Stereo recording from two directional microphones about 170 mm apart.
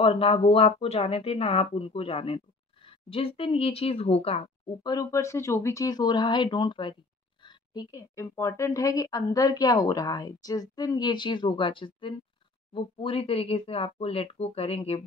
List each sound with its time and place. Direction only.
0.0 s speech: 35° left (ahead or behind)
4.8 s a woman's voice: 20° left (ahead or behind); by 14.8 s 35° left (ahead or behind)